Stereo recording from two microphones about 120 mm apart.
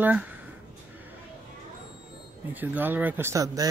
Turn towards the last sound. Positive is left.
turn(degrees=-30)  # may be behind; listen again after turning